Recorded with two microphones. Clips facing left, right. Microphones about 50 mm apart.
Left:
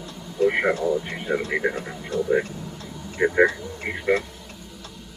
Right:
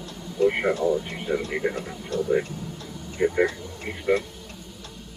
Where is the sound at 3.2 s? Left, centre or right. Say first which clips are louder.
Left 3 dB; left.